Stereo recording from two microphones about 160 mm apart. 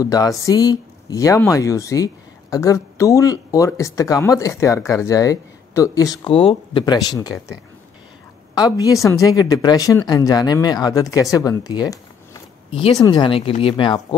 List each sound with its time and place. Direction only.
0.0 s speech: 20° left (ahead or behind)
8.5 s speech: 25° left (ahead or behind)
13.0 s speech: 30° left (ahead or behind)